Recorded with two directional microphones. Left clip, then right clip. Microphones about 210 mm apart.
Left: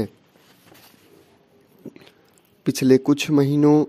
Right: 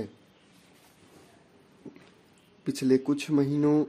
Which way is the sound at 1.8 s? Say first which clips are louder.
Left 7 dB; 35° left (ahead or behind).